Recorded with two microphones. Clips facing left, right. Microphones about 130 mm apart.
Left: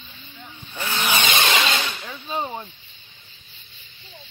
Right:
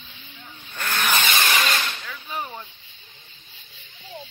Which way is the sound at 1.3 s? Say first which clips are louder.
Left 2 dB; 25° left (ahead or behind).